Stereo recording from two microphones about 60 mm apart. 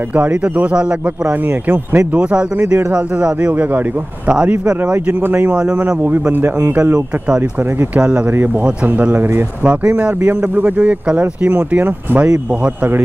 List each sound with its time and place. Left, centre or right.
0.1 s speech: right
1.7 s speech: right
2.9 s speech: centre
3.4 s speech: right
4.3 s speech: centre
5.2 s speech: right
6.8 s speech: centre
9.1 s speech: right
9.7 s speech: right